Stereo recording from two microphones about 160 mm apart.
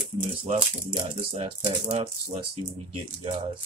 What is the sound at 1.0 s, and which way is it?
Speech, 40° right (ahead or behind).